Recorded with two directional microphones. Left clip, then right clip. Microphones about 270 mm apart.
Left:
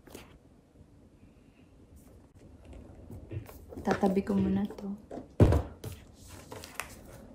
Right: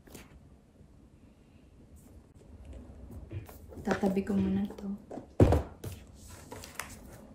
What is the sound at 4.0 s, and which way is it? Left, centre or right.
Speech, centre.